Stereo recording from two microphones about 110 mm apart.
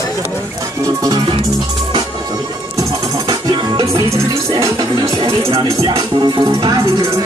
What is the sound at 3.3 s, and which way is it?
Music, 35° right (ahead or behind).